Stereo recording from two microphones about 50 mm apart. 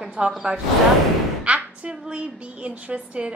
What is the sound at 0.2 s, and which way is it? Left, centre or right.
Speech, right.